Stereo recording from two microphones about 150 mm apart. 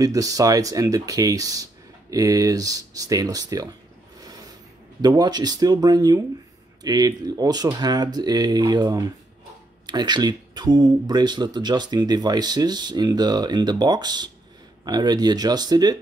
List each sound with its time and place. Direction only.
0.0 s speech: 25° right (ahead or behind)
4.2 s a sound: 25° right (ahead or behind)
5.0 s speech: 25° right (ahead or behind)